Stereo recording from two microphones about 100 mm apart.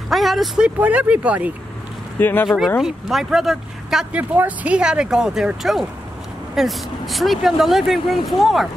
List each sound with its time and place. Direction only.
0.1 s speech: centre (ahead or behind)
0.7 s speech: 15° right (ahead or behind)
2.1 s speech: 20° left (ahead or behind)
2.4 s speech: 5° left (ahead or behind)
4.2 s speech: 15° right (ahead or behind); by 8.6 s centre (ahead or behind)